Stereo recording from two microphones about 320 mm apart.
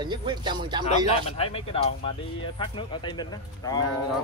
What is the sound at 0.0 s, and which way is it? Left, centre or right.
Speech, centre.